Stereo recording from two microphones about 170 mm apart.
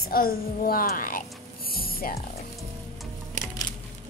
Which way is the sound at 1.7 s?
60° left (ahead or behind).